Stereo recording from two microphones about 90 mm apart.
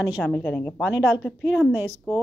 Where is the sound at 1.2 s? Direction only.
15° right (ahead or behind).